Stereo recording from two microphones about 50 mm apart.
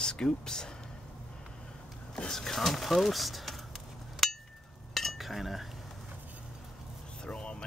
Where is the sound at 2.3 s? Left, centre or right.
Centre.